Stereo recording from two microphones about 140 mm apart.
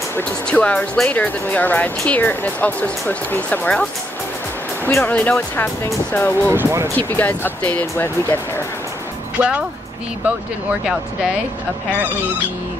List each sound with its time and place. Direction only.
0.1 s speech: 10° left (ahead or behind)
4.8 s speech: 15° left (ahead or behind)
6.5 s speech: 20° right (ahead or behind)
7.0 s speech: 15° left (ahead or behind)
9.4 s speech: 10° right (ahead or behind)